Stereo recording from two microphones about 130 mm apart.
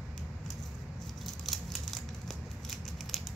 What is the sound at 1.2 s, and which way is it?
Scissors, centre (ahead or behind).